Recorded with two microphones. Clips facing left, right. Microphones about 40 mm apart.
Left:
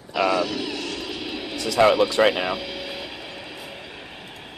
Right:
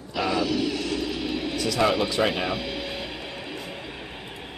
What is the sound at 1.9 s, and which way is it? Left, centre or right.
Speech, centre.